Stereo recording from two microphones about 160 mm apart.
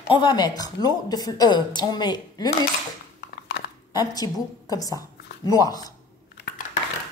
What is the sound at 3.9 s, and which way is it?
A woman's voice, 25° left (ahead or behind).